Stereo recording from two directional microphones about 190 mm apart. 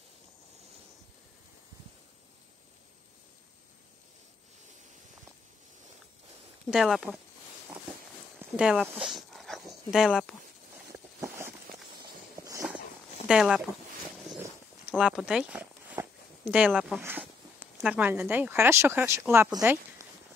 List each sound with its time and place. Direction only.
6.7 s speech: centre (ahead or behind)
8.4 s dog: 5° right (ahead or behind)
10.9 s a sound: 15° right (ahead or behind)
13.3 s speech: 5° right (ahead or behind)